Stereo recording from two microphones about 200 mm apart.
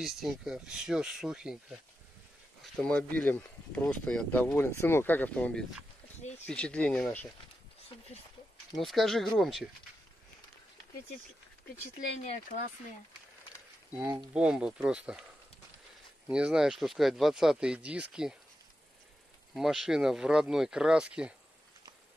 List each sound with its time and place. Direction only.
0.0 s speech: centre (ahead or behind)
8.7 s speech: centre (ahead or behind)
14.3 s speech: 5° right (ahead or behind)
16.3 s speech: 5° right (ahead or behind)
19.5 s speech: centre (ahead or behind)